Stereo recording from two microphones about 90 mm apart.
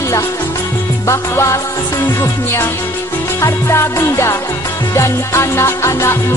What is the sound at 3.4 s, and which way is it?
Music, 30° left (ahead or behind).